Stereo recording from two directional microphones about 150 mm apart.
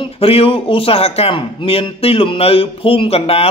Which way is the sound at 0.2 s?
40° left (ahead or behind).